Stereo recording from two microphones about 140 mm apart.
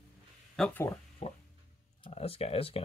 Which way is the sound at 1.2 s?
45° left (ahead or behind).